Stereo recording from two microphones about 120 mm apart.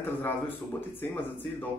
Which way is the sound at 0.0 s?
15° left (ahead or behind).